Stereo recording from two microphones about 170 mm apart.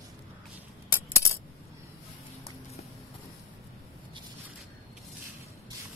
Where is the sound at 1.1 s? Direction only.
15° left (ahead or behind).